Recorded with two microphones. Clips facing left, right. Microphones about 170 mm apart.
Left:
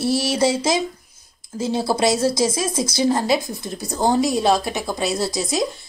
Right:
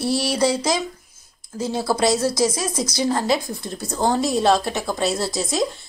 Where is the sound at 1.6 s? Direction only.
15° left (ahead or behind).